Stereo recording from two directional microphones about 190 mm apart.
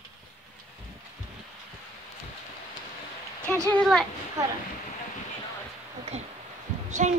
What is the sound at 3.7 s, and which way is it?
Speech, centre (ahead or behind).